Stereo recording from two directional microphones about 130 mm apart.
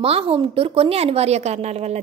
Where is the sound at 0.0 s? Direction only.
45° right (ahead or behind).